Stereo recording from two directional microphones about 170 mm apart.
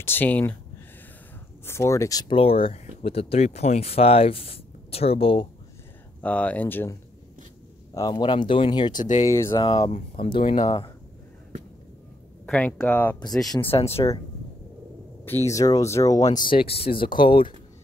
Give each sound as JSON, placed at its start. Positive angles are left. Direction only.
{"t": 0.0, "sound": "speech", "side_deg": 10}
{"t": 1.7, "sound": "speech", "side_deg": 15}
{"t": 6.2, "sound": "speech", "side_deg": 10}
{"t": 7.9, "sound": "speech", "side_deg": 25}
{"t": 9.0, "sound": "speech", "side_deg": 45}
{"t": 9.5, "sound": "speech", "side_deg": 25}
{"t": 12.4, "sound": "speech", "side_deg": 5}
{"t": 13.7, "sound": "speech", "side_deg": 35}
{"t": 15.2, "sound": "speech", "side_deg": 15}
{"t": 16.5, "sound": "speech", "side_deg": 35}